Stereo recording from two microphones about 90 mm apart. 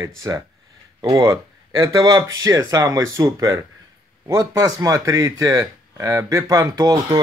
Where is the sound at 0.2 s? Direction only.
35° right (ahead or behind).